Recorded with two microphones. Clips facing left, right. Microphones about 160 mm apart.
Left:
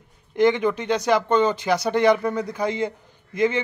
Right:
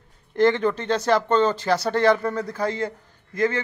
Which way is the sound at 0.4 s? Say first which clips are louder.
Even; 15° left (ahead or behind).